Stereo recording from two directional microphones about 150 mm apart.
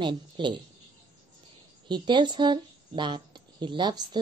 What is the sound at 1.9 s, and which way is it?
Speech, 30° right (ahead or behind).